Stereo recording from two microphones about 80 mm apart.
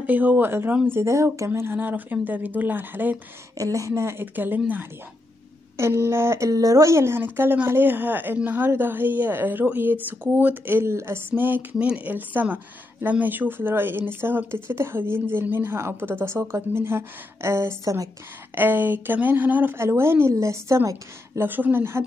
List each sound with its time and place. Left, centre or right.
0.0 s speech: right
3.5 s speech: right
5.8 s speech: right
18.5 s speech: right
19.8 s speech: right
21.4 s speech: right